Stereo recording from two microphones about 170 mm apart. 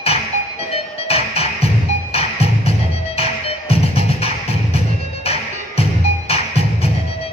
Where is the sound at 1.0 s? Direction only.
35° left (ahead or behind).